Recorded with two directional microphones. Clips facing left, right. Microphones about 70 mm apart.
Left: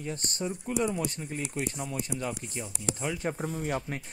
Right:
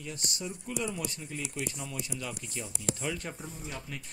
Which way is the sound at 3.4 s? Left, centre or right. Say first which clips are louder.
Left 10 dB; left.